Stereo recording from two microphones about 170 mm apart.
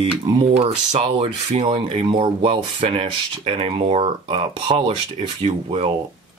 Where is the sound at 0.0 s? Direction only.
30° right (ahead or behind).